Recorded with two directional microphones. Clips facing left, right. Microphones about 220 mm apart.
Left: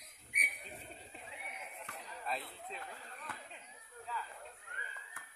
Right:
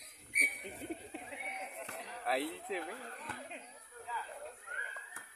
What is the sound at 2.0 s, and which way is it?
Speech, 75° right (ahead or behind).